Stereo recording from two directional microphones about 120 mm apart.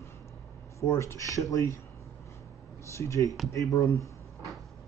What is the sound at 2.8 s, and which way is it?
Speech, 25° left (ahead or behind).